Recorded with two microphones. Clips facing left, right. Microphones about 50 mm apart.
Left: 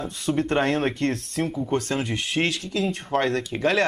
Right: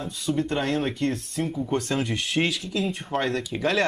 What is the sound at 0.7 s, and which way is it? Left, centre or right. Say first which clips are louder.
Speech: left 2 dB; left.